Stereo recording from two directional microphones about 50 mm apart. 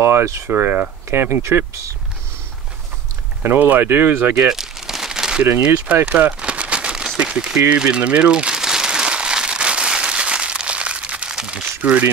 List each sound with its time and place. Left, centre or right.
0.0 s speech: right
0.5 s speech: right
3.4 s speech: right
4.5 s crumpling: centre
6.0 s a sound: right
7.2 s speech: centre
7.7 s crumpling: right